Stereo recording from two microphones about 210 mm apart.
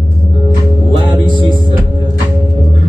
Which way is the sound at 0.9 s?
25° right (ahead or behind).